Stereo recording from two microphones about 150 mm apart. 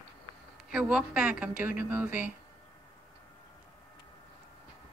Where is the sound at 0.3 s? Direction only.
35° right (ahead or behind).